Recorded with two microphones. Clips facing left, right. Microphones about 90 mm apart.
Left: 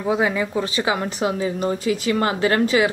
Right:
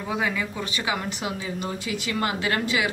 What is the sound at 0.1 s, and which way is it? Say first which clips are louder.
A woman's voice: left 7 dB; 35° left (ahead or behind).